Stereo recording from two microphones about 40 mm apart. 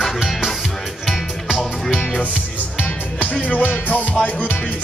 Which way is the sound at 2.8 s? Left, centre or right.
Left.